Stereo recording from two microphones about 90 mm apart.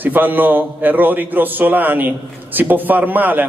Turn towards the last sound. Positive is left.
turn(degrees=-20)  # may be behind; listen again after turning